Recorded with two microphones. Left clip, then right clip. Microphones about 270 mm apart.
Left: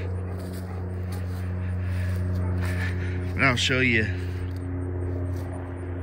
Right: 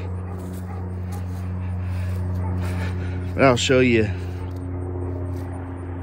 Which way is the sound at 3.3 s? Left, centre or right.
Centre.